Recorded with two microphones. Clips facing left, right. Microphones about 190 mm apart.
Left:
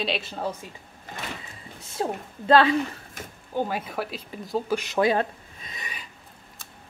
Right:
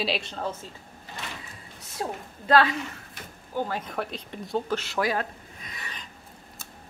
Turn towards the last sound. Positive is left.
turn(degrees=25)  # may be behind; listen again after turning